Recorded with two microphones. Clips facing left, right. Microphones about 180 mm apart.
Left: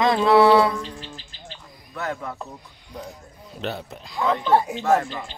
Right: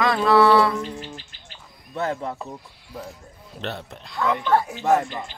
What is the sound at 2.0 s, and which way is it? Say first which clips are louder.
Speech: right 3 dB; 25° right (ahead or behind).